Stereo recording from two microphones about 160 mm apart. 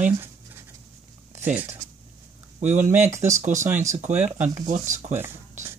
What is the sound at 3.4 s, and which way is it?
Speech, 50° right (ahead or behind).